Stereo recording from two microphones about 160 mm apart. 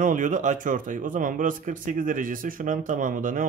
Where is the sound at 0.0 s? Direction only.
55° right (ahead or behind).